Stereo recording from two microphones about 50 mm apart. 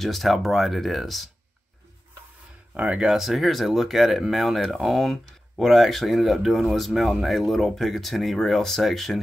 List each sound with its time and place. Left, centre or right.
0.0 s speech: centre
2.7 s speech: right
3.1 s speech: centre